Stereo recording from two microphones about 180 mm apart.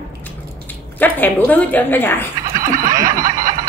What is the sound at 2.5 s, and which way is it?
Snicker, 50° right (ahead or behind).